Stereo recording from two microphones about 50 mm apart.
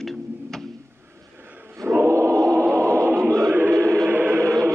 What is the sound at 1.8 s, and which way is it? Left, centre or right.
Choir, right.